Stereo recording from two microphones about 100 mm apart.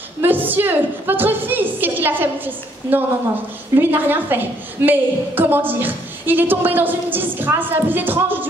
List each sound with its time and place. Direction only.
0.2 s a woman's voice: 20° right (ahead or behind)